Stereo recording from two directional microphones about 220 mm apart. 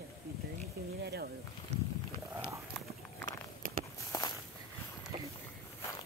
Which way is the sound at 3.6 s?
40° right (ahead or behind).